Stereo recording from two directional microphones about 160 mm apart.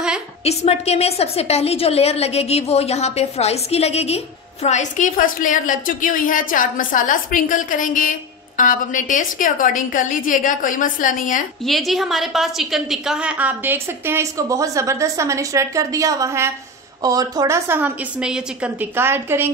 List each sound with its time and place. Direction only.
0.4 s a woman's voice: 40° left (ahead or behind)
11.6 s a woman's voice: centre (ahead or behind)